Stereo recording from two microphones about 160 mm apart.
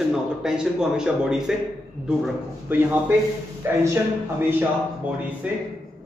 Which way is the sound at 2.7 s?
10° right (ahead or behind).